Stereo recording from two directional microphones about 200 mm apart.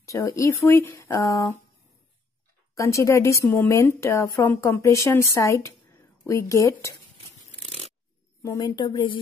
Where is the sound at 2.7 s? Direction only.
15° left (ahead or behind).